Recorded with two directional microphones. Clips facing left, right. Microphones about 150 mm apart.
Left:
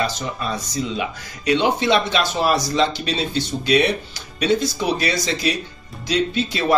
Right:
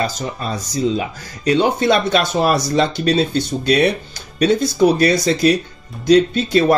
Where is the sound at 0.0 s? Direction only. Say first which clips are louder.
Right 2 dB; 40° right (ahead or behind).